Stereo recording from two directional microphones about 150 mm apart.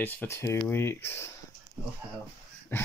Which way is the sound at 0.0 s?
15° left (ahead or behind).